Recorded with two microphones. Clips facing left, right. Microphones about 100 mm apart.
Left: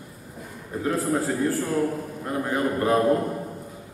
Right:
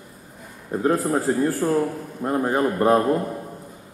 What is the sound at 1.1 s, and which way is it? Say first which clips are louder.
A man's voice: right 3 dB; 45° right (ahead or behind).